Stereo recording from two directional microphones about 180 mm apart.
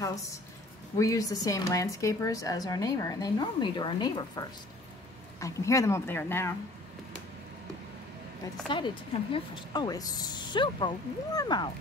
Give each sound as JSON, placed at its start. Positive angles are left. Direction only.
{"t": 0.9, "sound": "a woman's voice", "side_deg": 20}
{"t": 8.6, "sound": "a woman's voice", "side_deg": 25}